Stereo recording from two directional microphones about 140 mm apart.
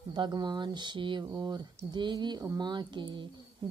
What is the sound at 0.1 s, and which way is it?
Speech, 30° right (ahead or behind).